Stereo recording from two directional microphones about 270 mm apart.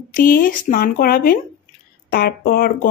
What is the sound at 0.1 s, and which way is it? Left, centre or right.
Speech, left.